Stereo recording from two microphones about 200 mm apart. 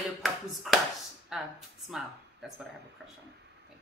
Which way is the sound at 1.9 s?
Centre (ahead or behind).